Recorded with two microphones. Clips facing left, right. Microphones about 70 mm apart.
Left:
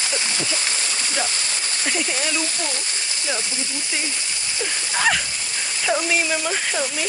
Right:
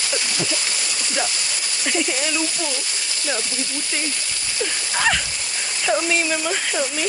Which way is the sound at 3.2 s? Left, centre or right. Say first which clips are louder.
Right 2 dB; left.